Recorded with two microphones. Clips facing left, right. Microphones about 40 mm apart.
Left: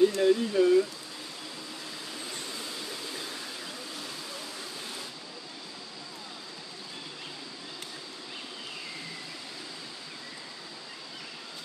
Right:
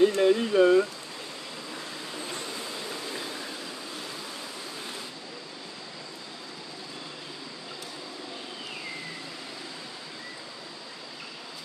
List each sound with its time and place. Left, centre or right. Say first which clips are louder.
0.0 s speech: right 2 dB; right